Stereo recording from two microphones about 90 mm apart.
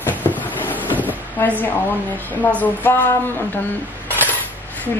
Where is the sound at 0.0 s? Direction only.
20° left (ahead or behind).